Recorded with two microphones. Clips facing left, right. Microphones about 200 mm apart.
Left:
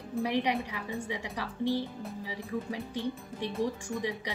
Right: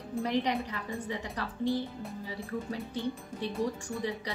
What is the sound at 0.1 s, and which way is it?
A woman's voice, 10° left (ahead or behind).